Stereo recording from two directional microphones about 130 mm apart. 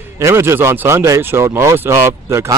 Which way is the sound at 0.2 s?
20° right (ahead or behind).